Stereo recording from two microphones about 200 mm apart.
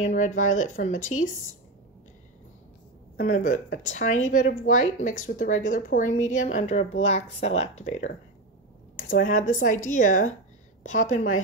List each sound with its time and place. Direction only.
0.0 s speech: 40° left (ahead or behind)
3.2 s speech: 40° left (ahead or behind)
9.1 s speech: 40° left (ahead or behind)